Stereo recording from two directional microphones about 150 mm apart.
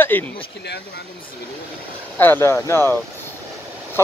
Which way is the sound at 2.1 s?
15° left (ahead or behind).